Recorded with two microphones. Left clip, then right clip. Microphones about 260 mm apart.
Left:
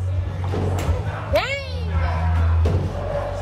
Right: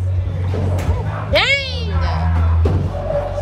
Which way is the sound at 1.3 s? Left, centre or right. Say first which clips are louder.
Right 7 dB; right.